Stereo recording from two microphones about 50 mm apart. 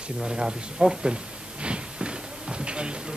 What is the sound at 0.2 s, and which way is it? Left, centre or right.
Speech, centre.